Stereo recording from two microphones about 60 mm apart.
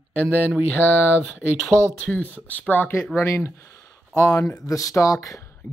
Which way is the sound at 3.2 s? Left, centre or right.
Left.